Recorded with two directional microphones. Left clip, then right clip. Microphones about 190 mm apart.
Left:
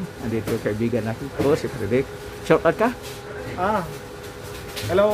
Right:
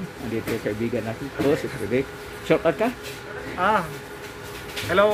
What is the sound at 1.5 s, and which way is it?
Speech, centre (ahead or behind).